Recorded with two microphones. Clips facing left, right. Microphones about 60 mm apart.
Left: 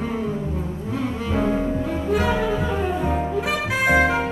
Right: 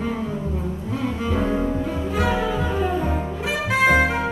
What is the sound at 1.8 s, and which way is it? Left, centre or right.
Music, left.